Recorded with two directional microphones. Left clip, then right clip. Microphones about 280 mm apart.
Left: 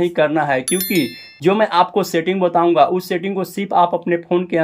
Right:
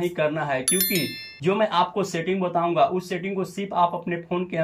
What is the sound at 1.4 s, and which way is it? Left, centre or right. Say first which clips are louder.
Speech: left 7 dB; centre.